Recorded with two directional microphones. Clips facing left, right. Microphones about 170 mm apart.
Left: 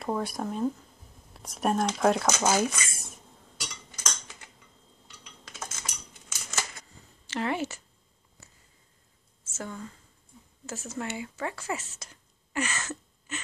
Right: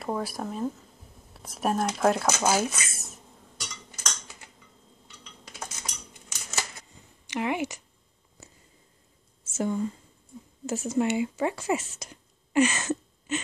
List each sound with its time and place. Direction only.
0.0 s speech: centre (ahead or behind)
5.6 s cutlery: 15° right (ahead or behind)
7.2 s a sound: 15° right (ahead or behind)
9.4 s speech: 15° right (ahead or behind)